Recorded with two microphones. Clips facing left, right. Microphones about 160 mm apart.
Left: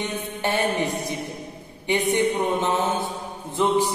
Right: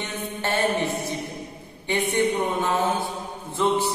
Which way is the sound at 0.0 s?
15° left (ahead or behind).